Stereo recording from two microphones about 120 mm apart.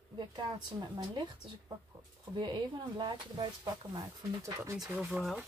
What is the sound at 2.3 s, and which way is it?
Speech, 40° right (ahead or behind).